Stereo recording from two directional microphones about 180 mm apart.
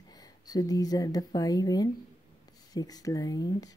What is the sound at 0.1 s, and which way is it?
Speech, 20° left (ahead or behind).